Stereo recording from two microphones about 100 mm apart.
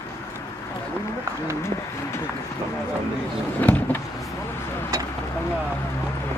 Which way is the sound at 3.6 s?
20° left (ahead or behind).